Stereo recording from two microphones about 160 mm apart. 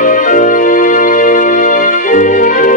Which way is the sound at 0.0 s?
55° left (ahead or behind).